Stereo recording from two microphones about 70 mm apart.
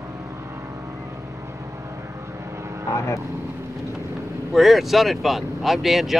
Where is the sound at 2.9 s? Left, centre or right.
Left.